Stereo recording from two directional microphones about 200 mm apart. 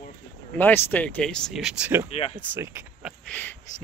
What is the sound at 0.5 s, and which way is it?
Speech, 10° left (ahead or behind).